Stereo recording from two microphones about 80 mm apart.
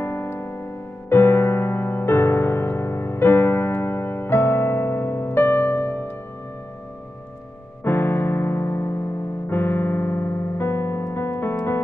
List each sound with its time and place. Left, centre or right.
0.0 s music: left
7.8 s piano: left
9.5 s keyboard: left